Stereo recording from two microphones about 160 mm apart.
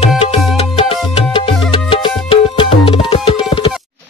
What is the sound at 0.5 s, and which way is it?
Music, 35° left (ahead or behind).